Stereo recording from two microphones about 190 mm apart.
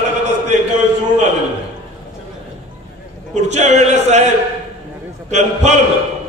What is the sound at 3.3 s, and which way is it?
A man's voice, 35° right (ahead or behind).